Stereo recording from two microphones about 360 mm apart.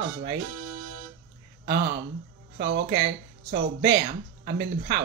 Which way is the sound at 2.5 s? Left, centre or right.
Right.